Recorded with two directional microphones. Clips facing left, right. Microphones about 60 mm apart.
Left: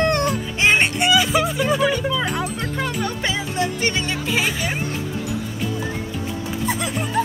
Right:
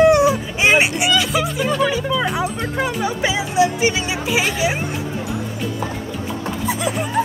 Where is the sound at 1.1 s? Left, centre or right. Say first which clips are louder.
Left 1 dB; centre.